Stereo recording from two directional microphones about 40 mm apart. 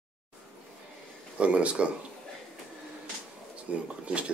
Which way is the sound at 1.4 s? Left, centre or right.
Right.